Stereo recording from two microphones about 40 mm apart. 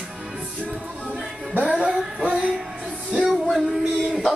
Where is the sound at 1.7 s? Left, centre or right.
Right.